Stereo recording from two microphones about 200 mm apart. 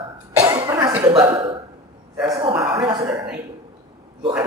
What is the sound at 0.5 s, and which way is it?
Cough, 20° right (ahead or behind).